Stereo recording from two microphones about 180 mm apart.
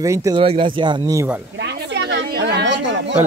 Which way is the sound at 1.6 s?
75° right (ahead or behind).